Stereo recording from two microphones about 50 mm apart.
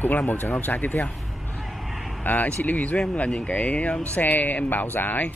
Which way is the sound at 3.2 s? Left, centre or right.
Left.